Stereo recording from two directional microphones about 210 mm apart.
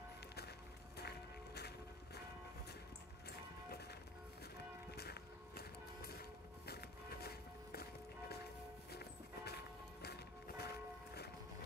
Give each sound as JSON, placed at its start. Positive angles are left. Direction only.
{"t": 0.9, "sound": "music", "side_deg": 50}
{"t": 4.9, "sound": "music", "side_deg": 50}
{"t": 8.9, "sound": "walk", "side_deg": 50}
{"t": 10.0, "sound": "music", "side_deg": 50}